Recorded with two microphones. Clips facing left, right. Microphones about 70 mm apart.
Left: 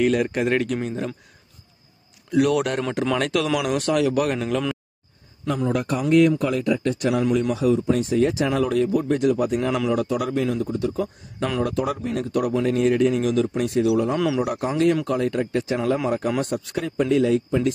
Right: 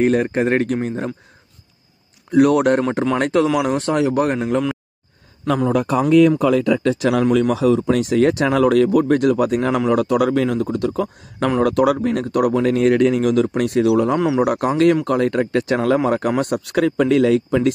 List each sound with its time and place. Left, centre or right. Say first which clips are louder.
0.0 s speech: right 4 dB; right
2.3 s speech: right 6 dB; right
5.6 s speech: right 5 dB; right
14.1 s speech: right 4 dB; right
14.4 s speech: right 5 dB; right